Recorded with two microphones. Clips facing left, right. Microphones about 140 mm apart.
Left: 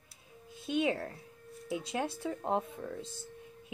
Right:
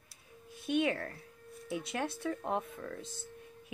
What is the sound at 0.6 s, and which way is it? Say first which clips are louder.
Speech: even; 25° left (ahead or behind).